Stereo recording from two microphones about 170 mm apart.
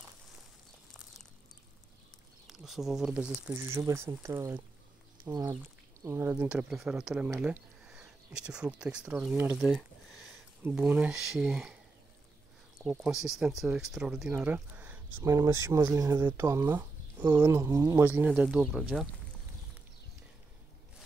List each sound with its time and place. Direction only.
2.4 s speech: centre (ahead or behind)
13.0 s speech: 5° right (ahead or behind)